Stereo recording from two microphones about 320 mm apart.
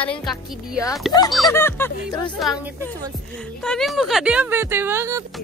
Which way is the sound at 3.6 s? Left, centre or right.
Centre.